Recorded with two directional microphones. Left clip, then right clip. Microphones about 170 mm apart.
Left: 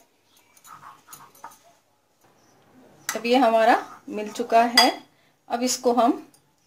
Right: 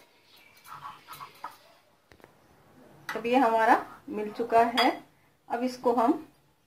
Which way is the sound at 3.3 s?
80° left.